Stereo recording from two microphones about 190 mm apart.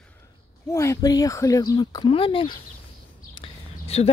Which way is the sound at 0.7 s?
15° left (ahead or behind).